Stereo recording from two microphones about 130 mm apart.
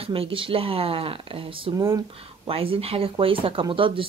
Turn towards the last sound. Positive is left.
turn(degrees=-40)  # may be behind; listen again after turning